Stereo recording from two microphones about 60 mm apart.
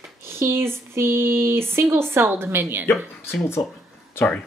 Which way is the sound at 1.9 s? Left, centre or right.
Right.